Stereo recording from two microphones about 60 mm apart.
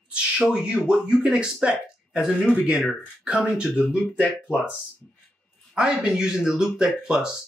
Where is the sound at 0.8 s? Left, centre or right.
Centre.